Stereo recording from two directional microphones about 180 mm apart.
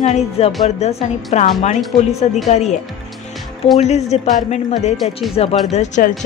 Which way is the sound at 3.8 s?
40° left (ahead or behind).